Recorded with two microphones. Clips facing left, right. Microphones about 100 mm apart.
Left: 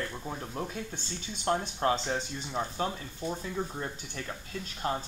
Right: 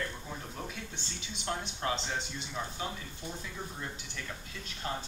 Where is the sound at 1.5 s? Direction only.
40° left (ahead or behind).